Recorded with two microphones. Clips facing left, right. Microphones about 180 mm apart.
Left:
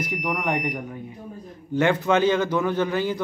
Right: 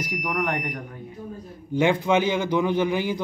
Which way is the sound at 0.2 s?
10° left (ahead or behind).